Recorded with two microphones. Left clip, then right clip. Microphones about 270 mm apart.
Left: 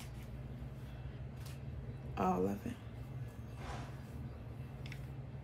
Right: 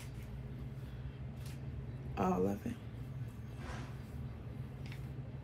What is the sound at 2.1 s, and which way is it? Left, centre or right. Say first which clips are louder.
Speech: even; centre.